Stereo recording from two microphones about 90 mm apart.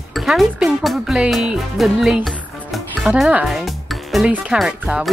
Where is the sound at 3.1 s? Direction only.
15° right (ahead or behind).